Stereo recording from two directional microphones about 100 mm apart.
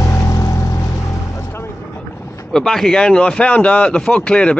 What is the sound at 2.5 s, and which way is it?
Speech, 5° left (ahead or behind).